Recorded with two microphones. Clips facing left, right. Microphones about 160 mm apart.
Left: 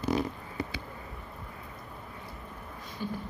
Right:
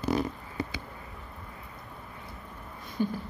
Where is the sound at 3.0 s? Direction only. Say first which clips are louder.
Right 7 dB; 50° right (ahead or behind).